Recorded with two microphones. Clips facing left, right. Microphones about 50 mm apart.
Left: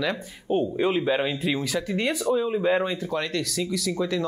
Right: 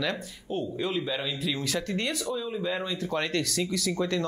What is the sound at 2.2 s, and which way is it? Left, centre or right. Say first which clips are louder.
Speech: left 8 dB; left.